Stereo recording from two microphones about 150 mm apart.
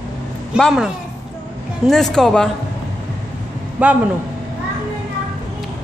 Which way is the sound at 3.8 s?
10° right (ahead or behind).